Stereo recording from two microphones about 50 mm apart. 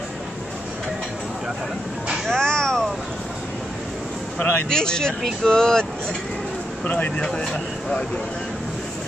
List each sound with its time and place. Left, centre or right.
2.2 s a sound: centre
4.6 s speech: centre
6.8 s speech: left
7.2 s speech: centre